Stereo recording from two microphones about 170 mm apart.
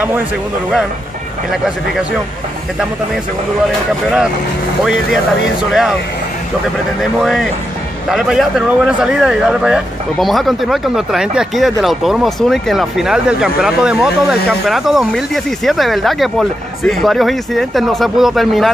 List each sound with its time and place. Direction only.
1.5 s speech: centre (ahead or behind)
4.8 s speech: centre (ahead or behind)
7.0 s speech: centre (ahead or behind)